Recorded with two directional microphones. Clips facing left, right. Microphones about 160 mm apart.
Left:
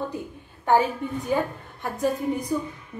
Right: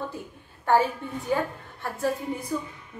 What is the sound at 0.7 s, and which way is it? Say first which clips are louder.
A woman's voice: left 2 dB; 15° left (ahead or behind).